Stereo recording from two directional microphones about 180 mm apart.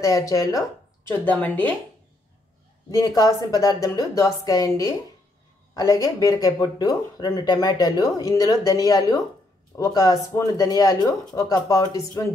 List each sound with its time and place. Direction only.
0.0 s speech: 20° left (ahead or behind)
3.2 s speech: 20° left (ahead or behind)